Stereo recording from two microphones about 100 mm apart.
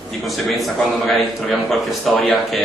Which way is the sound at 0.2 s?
Centre (ahead or behind).